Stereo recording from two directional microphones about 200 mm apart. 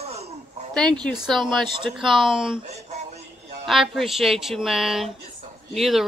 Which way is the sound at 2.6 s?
35° right (ahead or behind).